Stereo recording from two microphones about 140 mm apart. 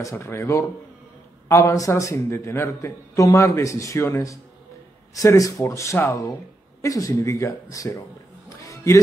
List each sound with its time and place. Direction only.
0.0 s a man's voice: 20° left (ahead or behind)
8.6 s music: 25° left (ahead or behind)